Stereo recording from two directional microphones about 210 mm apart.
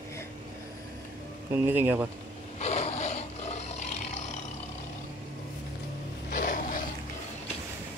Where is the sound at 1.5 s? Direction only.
10° right (ahead or behind).